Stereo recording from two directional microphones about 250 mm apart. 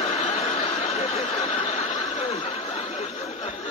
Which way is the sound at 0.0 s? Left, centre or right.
Left.